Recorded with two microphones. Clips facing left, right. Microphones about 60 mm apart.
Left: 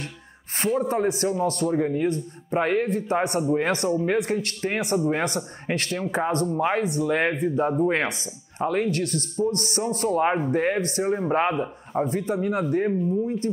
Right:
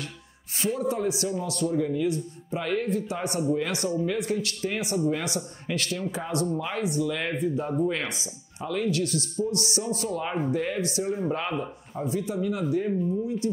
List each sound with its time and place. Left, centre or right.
0.7 s speech: left